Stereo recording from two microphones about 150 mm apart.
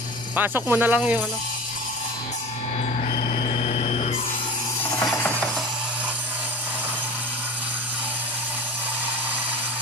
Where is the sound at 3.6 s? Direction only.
45° left (ahead or behind).